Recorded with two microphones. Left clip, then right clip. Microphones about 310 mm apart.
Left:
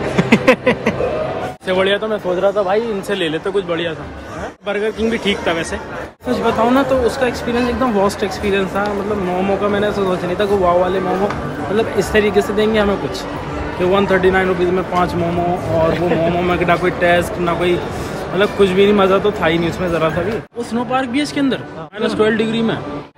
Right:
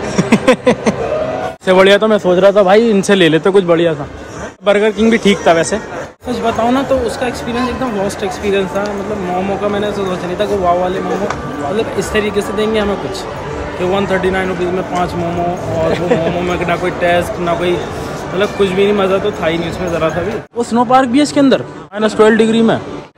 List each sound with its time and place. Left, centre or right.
0.3 s speech: centre
1.7 s speech: centre
6.3 s speech: centre
12.1 s speech: centre
16.3 s speech: centre
20.7 s speech: centre